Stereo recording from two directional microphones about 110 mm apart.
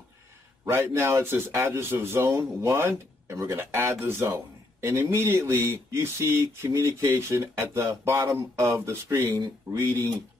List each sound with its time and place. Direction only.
0.7 s mantra: 20° right (ahead or behind)